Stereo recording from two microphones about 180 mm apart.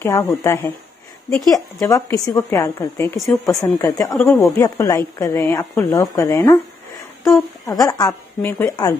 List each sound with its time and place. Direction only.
0.0 s a woman's voice: 15° left (ahead or behind)
4.1 s speech: 5° left (ahead or behind)
4.4 s a woman's voice: 15° left (ahead or behind)
5.4 s speech: 5° left (ahead or behind)
5.8 s a woman's voice: 20° left (ahead or behind)
7.6 s a woman's voice: 20° left (ahead or behind)
8.4 s speech: 10° left (ahead or behind)